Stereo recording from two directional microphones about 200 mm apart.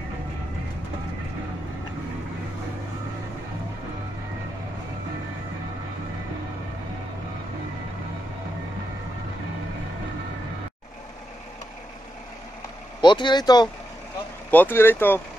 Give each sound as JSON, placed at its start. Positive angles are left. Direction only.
{"t": 13.0, "sound": "speech", "side_deg": 20}
{"t": 14.5, "sound": "speech", "side_deg": 10}